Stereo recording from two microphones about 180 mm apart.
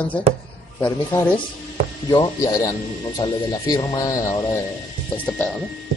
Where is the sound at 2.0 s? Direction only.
15° left (ahead or behind).